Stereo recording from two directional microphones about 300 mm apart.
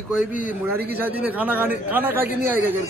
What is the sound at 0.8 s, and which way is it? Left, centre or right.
A man's voice, centre.